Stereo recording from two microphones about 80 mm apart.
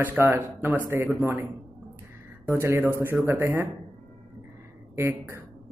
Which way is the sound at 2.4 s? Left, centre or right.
Right.